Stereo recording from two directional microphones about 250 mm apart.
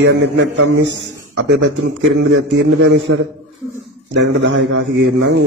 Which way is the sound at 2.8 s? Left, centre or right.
Right.